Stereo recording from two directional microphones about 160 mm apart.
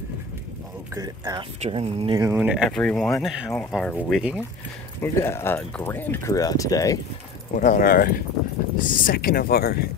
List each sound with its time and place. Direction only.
0.9 s speech: 20° right (ahead or behind)
1.6 s speech: 35° right (ahead or behind)
2.2 s speech: 10° right (ahead or behind)
2.7 s speech: 5° left (ahead or behind)
3.9 s speech: 5° right (ahead or behind)
5.0 s speech: 15° left (ahead or behind)
7.5 s speech: 55° left (ahead or behind); by 9.8 s 70° left (ahead or behind)